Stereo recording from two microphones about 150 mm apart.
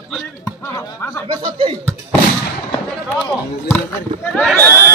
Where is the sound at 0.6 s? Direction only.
20° left (ahead or behind).